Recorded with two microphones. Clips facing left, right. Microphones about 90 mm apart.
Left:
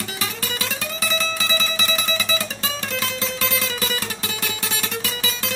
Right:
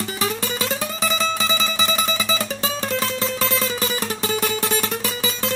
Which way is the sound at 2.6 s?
30° right (ahead or behind).